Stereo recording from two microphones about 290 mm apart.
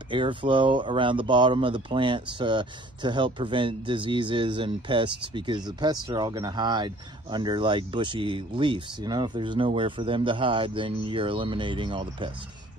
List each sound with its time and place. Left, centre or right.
0.1 s speech: centre